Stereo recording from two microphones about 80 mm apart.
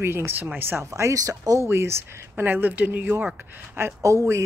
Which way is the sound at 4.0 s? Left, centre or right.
Right.